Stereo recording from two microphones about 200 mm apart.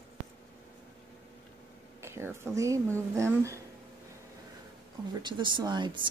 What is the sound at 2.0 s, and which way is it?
A woman's voice, 15° right (ahead or behind).